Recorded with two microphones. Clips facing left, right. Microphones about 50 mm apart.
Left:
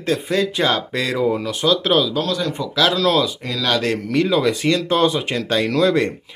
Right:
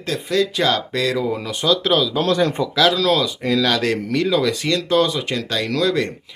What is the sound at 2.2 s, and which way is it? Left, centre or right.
Speech, right.